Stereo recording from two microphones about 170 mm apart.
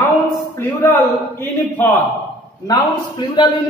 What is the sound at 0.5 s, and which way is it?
A man's voice, 15° left (ahead or behind).